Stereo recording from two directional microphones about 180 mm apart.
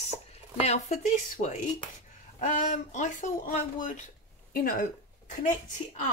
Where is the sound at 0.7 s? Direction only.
40° left (ahead or behind).